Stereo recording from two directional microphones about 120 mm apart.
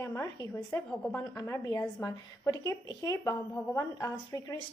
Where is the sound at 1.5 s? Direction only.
20° left (ahead or behind).